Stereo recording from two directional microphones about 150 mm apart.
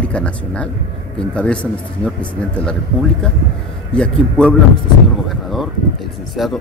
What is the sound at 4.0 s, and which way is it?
Speech, 5° left (ahead or behind).